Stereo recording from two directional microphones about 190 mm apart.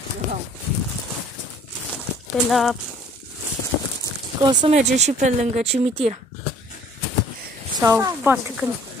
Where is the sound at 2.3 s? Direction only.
Centre (ahead or behind).